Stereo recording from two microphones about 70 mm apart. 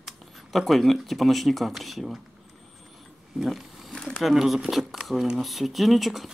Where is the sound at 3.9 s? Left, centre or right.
Centre.